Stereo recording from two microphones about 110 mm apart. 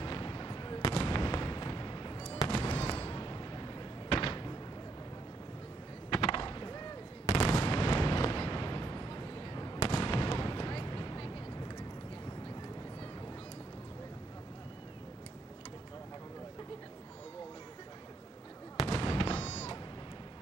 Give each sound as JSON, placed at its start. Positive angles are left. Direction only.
{"t": 0.0, "sound": "fireworks", "side_deg": 40}
{"t": 2.6, "sound": "slam", "side_deg": 45}
{"t": 6.0, "sound": "a sound", "side_deg": 50}
{"t": 7.3, "sound": "artillery fire", "side_deg": 30}
{"t": 9.8, "sound": "fireworks", "side_deg": 40}
{"t": 10.4, "sound": "basketball bounce", "side_deg": 35}
{"t": 18.8, "sound": "fireworks", "side_deg": 40}